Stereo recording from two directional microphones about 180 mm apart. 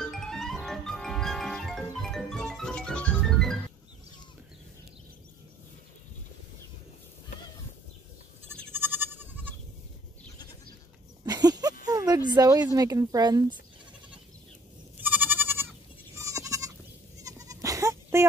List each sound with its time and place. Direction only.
0.0 s music: 5° left (ahead or behind)
8.6 s goat: 10° right (ahead or behind)
11.2 s a sound: 20° right (ahead or behind)
12.3 s speech: 20° right (ahead or behind)
15.0 s goat: 10° right (ahead or behind)